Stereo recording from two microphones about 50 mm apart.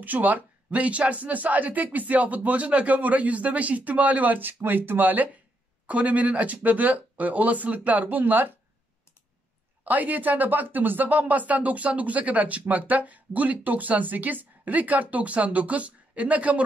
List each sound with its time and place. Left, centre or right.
0.0 s speech: right
9.8 s speech: right